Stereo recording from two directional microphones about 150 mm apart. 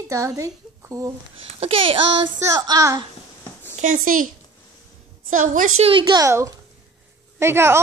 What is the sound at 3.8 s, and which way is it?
Speech, 60° right (ahead or behind).